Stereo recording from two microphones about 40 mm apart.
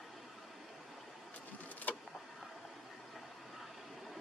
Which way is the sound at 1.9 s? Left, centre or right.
Left.